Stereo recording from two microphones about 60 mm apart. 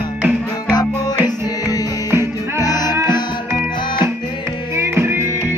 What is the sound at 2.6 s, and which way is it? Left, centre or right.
Music, left.